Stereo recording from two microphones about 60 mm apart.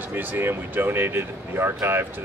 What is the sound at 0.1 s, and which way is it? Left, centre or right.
Speech, right.